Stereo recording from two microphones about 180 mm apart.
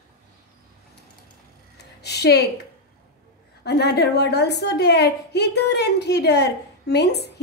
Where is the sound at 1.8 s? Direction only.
65° left (ahead or behind).